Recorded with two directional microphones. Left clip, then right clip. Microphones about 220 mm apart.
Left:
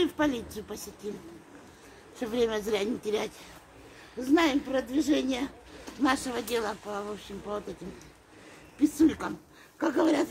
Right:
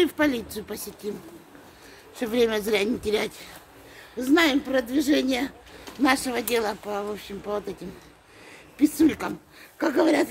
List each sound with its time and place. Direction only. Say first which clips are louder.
0.0 s speech: right 5 dB; 40° right (ahead or behind)
2.1 s speech: right 5 dB; 40° right (ahead or behind)
8.7 s speech: right 3 dB; 35° right (ahead or behind)